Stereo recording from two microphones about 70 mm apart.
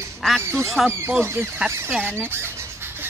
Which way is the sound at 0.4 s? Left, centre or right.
Right.